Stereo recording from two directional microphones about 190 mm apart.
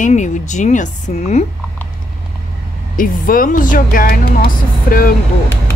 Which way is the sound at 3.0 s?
45° left (ahead or behind).